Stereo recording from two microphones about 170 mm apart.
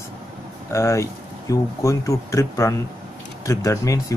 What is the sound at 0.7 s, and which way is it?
Speech, 15° left (ahead or behind).